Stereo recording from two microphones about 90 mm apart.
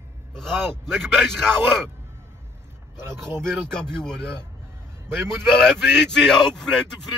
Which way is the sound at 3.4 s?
5° left (ahead or behind).